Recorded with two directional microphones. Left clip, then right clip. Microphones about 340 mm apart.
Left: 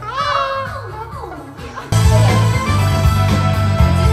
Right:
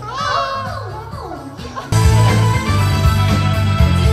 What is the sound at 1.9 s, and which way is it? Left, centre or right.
Music, centre.